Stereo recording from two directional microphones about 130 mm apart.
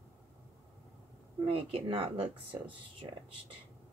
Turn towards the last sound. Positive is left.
turn(degrees=-40)  # may be behind; listen again after turning